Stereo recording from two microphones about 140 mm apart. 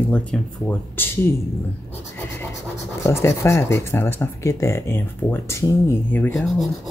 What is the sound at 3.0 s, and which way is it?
Speech, 20° left (ahead or behind).